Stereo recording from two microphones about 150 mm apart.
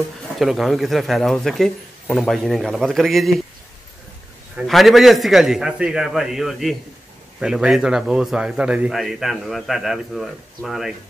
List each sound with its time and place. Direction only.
0.4 s a man's voice: centre (ahead or behind)
4.6 s a man's voice: centre (ahead or behind)